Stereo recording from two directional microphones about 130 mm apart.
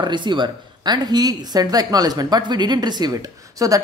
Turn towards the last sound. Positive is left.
turn(degrees=-30)  # may be behind; listen again after turning